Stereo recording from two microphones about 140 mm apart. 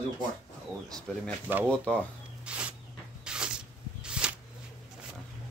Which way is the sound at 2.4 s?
10° right (ahead or behind).